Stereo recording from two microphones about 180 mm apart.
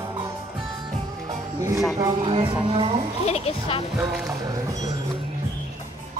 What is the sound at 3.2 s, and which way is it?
Speech, 35° left (ahead or behind).